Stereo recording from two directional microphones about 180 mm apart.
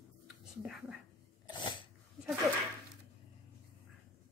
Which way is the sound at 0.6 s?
5° right (ahead or behind).